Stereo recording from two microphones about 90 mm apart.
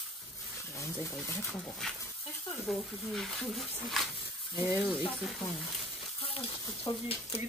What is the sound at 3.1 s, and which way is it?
Speech, 5° left (ahead or behind).